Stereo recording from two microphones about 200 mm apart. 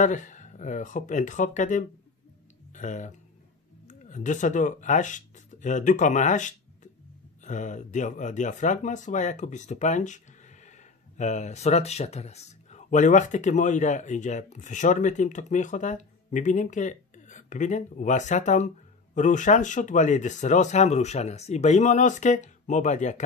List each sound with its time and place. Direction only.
0.0 s speech: 40° left (ahead or behind)